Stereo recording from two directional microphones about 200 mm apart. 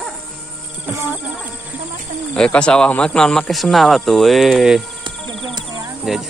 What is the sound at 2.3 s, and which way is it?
Speech, 5° left (ahead or behind).